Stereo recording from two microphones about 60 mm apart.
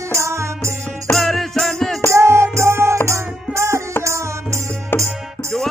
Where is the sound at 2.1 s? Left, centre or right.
Right.